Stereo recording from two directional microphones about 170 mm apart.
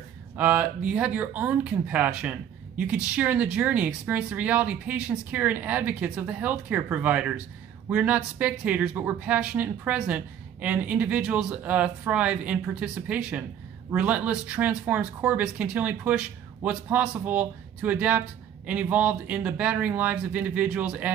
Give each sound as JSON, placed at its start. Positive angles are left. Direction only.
{"t": 0.4, "sound": "speech", "side_deg": -10}